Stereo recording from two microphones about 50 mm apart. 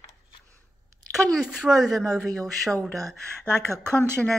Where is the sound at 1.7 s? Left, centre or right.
Centre.